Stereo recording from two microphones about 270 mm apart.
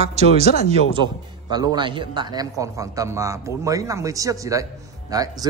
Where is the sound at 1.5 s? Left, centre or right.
Centre.